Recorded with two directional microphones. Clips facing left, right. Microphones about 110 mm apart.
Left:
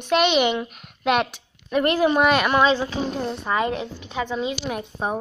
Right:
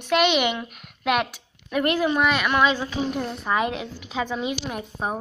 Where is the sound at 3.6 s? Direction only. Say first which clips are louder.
Left 2 dB; 10° right (ahead or behind).